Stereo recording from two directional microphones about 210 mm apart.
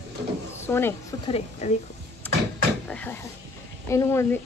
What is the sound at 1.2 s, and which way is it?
Speech, 30° left (ahead or behind).